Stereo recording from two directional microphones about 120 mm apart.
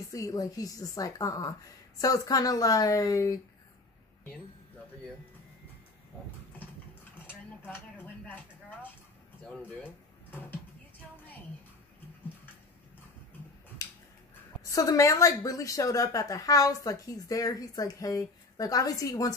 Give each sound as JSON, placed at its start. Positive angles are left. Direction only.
{"t": 0.1, "sound": "a woman's voice", "side_deg": 30}
{"t": 7.2, "sound": "a sound", "side_deg": 15}
{"t": 9.6, "sound": "speech", "side_deg": 15}
{"t": 14.6, "sound": "a woman's voice", "side_deg": 30}